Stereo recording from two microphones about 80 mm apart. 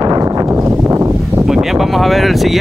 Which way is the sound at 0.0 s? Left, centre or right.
Right.